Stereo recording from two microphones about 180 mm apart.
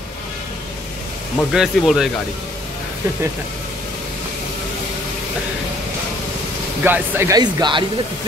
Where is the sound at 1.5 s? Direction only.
5° right (ahead or behind).